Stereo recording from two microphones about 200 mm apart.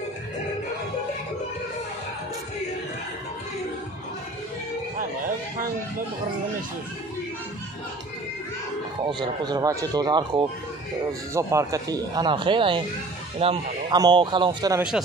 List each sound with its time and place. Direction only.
9.0 s speech: 20° right (ahead or behind)